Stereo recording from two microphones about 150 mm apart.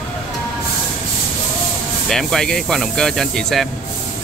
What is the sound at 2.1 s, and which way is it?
Speech, 5° left (ahead or behind).